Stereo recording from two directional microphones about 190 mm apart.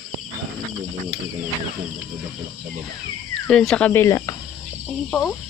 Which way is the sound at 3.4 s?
5° left (ahead or behind).